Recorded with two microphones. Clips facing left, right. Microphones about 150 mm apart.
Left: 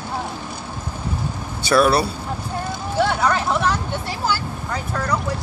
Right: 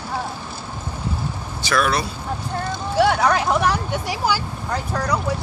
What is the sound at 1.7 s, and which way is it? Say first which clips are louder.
Speech: left 5 dB; 30° left (ahead or behind).